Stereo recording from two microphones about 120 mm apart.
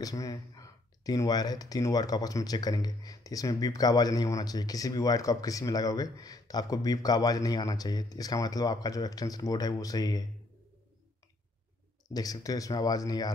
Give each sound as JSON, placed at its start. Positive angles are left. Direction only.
{"t": 0.0, "sound": "speech", "side_deg": 30}
{"t": 12.1, "sound": "speech", "side_deg": 30}